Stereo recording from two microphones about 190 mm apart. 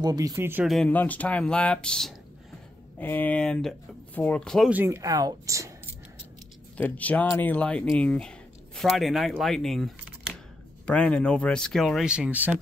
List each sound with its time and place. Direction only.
0.0 s speech: 20° right (ahead or behind)
0.7 s speech: 5° left (ahead or behind)
4.7 s speech: 15° right (ahead or behind)
6.8 s speech: 10° left (ahead or behind); by 12.5 s 10° right (ahead or behind)